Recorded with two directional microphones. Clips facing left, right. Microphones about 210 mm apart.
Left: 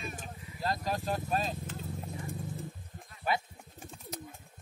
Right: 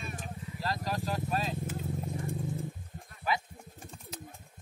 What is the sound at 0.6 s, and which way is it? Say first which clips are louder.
Vehicle: left 1 dB; 45° left (ahead or behind).